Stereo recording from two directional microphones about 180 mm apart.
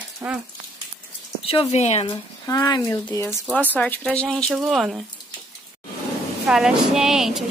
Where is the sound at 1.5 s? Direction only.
35° left (ahead or behind).